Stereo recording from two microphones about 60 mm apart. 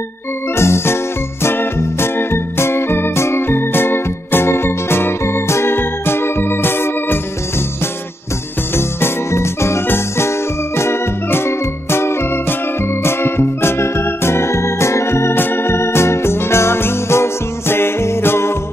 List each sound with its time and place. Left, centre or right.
0.6 s music: left